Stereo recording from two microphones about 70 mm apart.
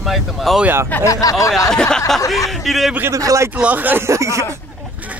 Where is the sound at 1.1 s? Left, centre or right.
Left.